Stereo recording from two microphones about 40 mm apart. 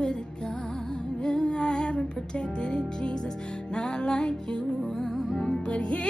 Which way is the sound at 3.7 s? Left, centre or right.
Left.